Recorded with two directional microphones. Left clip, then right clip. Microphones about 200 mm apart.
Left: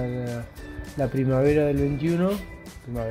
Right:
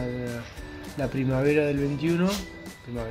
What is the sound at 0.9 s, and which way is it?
Speech, 45° left (ahead or behind).